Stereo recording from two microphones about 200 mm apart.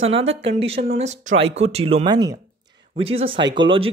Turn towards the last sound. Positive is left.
turn(degrees=-25)  # may be behind; listen again after turning